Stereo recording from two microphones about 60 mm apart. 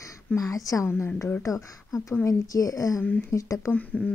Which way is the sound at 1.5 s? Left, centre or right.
Left.